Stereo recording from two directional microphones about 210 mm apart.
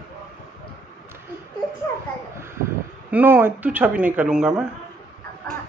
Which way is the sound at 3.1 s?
10° right (ahead or behind).